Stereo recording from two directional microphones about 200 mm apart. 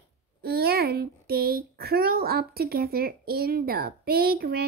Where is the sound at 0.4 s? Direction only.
50° right (ahead or behind).